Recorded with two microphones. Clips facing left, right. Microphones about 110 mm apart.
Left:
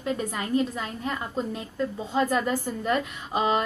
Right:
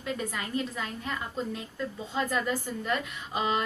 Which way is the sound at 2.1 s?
35° left (ahead or behind).